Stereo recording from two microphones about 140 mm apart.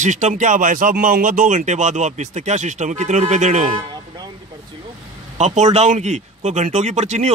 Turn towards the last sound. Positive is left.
turn(degrees=-55)  # may be behind; listen again after turning